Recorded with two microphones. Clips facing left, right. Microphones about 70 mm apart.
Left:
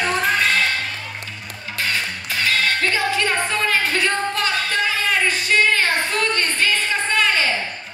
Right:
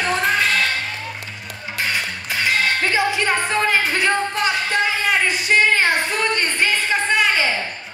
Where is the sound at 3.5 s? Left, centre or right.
Right.